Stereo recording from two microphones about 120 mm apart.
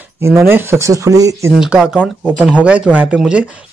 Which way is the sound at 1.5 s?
5° right (ahead or behind).